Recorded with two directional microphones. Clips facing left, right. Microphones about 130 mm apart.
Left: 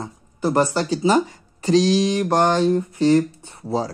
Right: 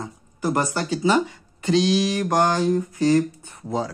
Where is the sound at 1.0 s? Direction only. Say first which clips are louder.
Left 1 dB; 40° left (ahead or behind).